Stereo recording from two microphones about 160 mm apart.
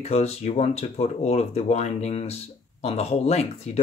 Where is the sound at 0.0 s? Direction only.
40° left (ahead or behind).